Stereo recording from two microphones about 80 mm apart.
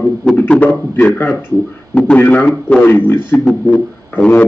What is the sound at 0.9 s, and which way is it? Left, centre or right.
A man's voice, left.